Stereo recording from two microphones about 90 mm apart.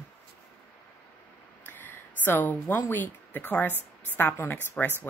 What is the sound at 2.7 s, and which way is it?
Speech, 20° left (ahead or behind).